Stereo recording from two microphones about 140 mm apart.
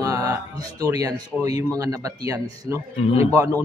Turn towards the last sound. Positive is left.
turn(degrees=-25)  # may be behind; listen again after turning